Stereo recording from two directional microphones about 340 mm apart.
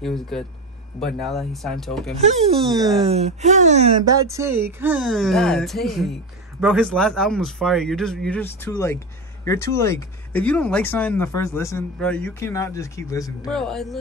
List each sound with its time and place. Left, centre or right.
0.0 s speech: centre
2.1 s speech: centre